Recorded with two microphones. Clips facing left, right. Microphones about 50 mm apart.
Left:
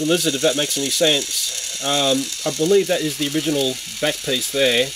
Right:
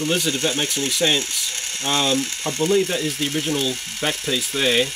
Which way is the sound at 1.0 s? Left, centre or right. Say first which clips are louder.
Left 3 dB; centre.